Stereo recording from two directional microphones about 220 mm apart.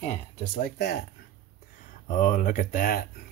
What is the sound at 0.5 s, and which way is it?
Speech, 45° left (ahead or behind).